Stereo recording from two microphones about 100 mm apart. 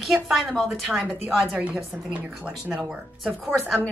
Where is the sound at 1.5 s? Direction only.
15° right (ahead or behind).